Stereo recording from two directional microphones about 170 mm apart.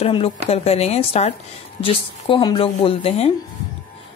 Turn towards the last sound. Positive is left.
turn(degrees=35)  # may be behind; listen again after turning